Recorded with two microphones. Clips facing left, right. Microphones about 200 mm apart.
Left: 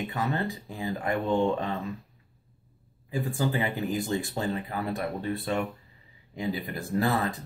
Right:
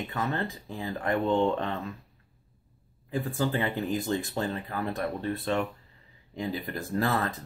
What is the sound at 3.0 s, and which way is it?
Speech, 15° left (ahead or behind).